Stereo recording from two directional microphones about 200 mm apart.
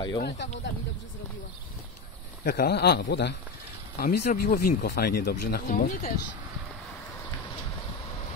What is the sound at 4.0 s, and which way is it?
Speech, 45° left (ahead or behind).